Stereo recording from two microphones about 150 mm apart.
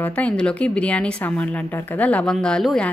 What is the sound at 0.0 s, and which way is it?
A woman's voice, 10° left (ahead or behind).